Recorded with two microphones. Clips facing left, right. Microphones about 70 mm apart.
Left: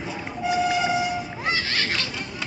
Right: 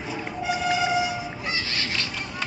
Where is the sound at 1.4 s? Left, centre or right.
Left.